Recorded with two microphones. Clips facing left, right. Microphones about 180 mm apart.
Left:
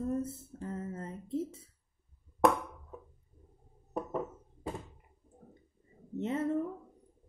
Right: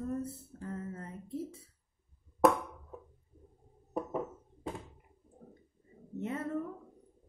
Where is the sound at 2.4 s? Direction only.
5° right (ahead or behind).